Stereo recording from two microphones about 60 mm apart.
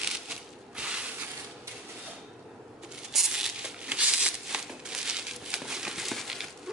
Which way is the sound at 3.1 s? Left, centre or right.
Centre.